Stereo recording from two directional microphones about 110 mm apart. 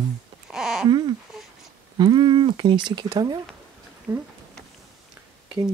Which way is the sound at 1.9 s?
45° right (ahead or behind).